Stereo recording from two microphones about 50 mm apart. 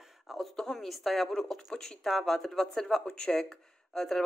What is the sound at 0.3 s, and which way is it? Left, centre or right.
Speech, centre.